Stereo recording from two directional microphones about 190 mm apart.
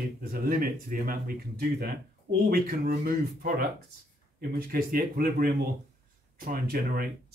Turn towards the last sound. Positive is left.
turn(degrees=-50)  # may be behind; listen again after turning